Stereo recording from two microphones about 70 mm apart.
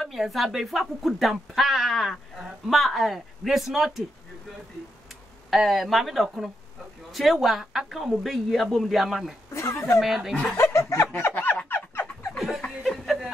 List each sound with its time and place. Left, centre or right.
0.0 s speech: centre
5.5 s speech: centre
9.5 s a sound: left
9.8 s speech: centre
10.6 s snicker: left
11.7 s a sound: left
12.4 s laughter: centre
12.8 s chuckle: centre